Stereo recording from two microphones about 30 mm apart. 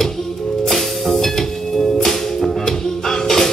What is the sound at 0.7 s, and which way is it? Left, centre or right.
Music, centre.